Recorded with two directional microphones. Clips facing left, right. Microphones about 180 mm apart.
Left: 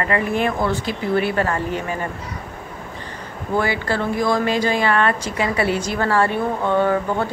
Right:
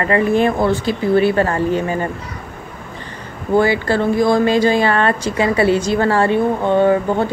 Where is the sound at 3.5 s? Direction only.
30° right (ahead or behind).